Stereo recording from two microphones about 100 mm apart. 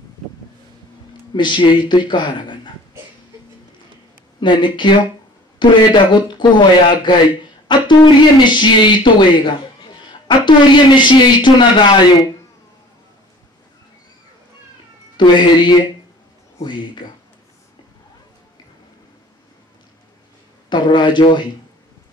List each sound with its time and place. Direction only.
1.3 s a woman's voice: 50° left (ahead or behind)
4.4 s a woman's voice: 50° left (ahead or behind)
15.1 s a woman's voice: 50° left (ahead or behind)
20.7 s a woman's voice: 50° left (ahead or behind)